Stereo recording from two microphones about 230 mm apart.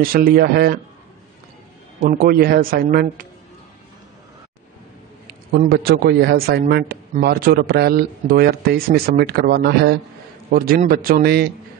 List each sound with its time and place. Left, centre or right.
0.0 s a man's voice: right
2.0 s a man's voice: right
5.5 s a man's voice: right